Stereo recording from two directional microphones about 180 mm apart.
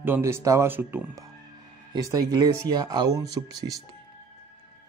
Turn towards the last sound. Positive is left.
turn(degrees=-20)  # may be behind; listen again after turning